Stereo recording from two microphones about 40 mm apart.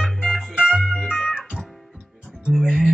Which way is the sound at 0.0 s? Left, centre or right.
Centre.